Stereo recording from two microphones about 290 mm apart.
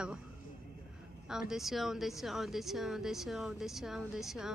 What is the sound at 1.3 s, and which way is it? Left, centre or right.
Speech, centre.